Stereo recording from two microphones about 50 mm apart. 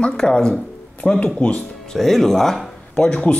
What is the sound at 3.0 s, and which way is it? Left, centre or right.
Speech, left.